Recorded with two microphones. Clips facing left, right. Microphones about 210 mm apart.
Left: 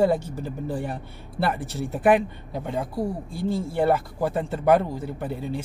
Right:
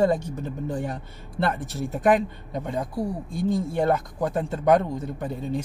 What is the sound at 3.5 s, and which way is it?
Speech, 5° left (ahead or behind).